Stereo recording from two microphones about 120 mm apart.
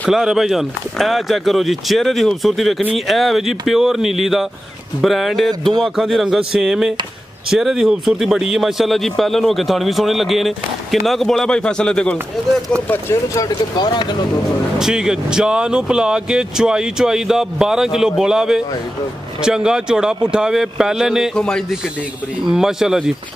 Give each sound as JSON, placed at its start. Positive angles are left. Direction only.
{"t": 0.1, "sound": "a man's voice", "side_deg": -5}
{"t": 12.8, "sound": "speech", "side_deg": 20}
{"t": 14.8, "sound": "a man's voice", "side_deg": -5}
{"t": 22.5, "sound": "speech", "side_deg": -5}